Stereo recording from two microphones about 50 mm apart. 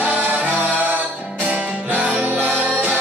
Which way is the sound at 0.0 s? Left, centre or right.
Right.